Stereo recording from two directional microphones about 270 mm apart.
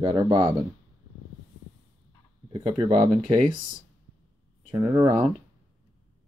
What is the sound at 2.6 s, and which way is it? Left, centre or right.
Speech, centre.